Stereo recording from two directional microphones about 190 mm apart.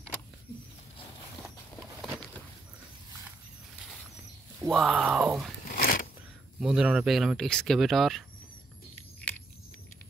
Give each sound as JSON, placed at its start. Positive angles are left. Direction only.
{"t": 4.6, "sound": "speech", "side_deg": 0}
{"t": 5.7, "sound": "a sound", "side_deg": 50}
{"t": 6.6, "sound": "speech", "side_deg": -5}